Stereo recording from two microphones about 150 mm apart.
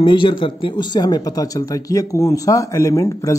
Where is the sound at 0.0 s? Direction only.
35° left (ahead or behind).